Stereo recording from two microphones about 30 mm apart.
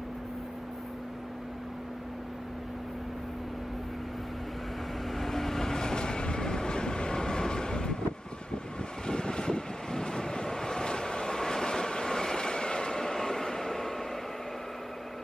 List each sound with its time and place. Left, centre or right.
5.1 s vehicle: centre
5.8 s train: left
9.0 s vehicle: left; by 13.9 s centre